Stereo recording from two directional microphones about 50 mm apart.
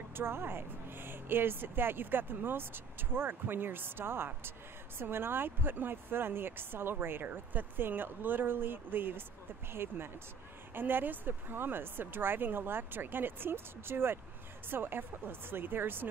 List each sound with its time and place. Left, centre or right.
0.1 s speech: right